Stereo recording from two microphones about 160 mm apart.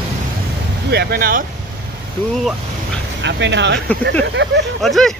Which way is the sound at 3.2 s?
90° right.